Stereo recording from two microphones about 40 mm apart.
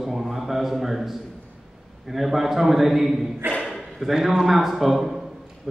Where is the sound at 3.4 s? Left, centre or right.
Right.